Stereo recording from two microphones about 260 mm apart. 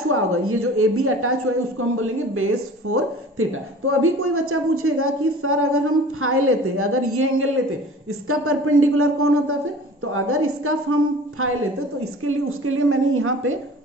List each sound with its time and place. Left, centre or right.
0.1 s a woman's voice: right